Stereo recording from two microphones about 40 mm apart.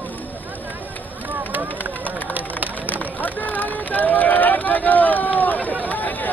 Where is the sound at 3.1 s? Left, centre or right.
Left.